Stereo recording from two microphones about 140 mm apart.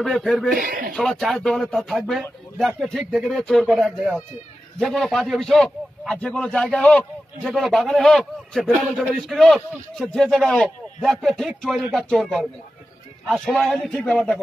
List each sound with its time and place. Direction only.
0.0 s a man's voice: centre (ahead or behind)
0.5 s speech: 90° right
0.9 s a man's voice: centre (ahead or behind)